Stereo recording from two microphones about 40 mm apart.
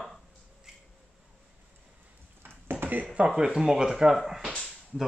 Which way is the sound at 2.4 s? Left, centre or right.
Right.